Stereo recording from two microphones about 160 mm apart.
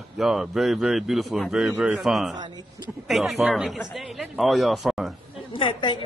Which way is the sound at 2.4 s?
25° right (ahead or behind).